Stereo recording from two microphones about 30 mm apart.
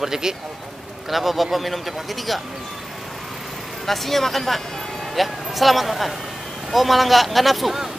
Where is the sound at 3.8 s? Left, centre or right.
Centre.